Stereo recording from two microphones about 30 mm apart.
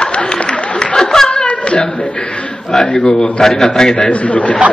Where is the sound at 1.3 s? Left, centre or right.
Left.